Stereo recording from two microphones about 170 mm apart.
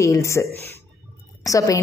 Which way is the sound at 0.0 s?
15° left (ahead or behind).